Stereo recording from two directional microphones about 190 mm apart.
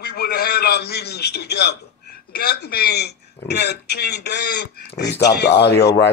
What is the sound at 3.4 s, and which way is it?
A man's voice, 60° left (ahead or behind).